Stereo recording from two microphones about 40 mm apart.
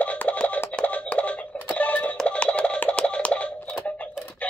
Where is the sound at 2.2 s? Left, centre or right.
Left.